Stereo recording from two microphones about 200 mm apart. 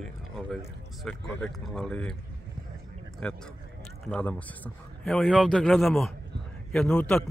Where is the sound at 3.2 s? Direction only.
5° left (ahead or behind).